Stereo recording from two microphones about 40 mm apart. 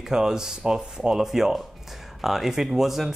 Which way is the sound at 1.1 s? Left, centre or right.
Centre.